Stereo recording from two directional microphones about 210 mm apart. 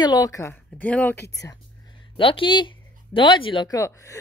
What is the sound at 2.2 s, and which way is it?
Speech, 25° left (ahead or behind).